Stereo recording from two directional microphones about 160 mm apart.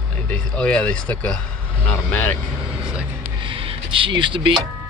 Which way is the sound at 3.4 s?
35° right (ahead or behind).